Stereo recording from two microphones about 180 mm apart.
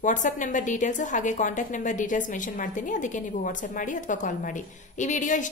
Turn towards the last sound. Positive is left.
turn(degrees=45)  # may be behind; listen again after turning